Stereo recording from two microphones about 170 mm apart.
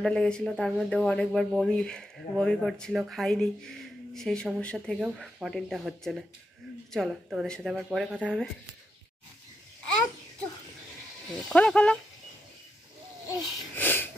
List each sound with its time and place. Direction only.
0.0 s speech: 5° left (ahead or behind)
11.4 s speech: 5° left (ahead or behind)
13.3 s wheeze: 10° left (ahead or behind)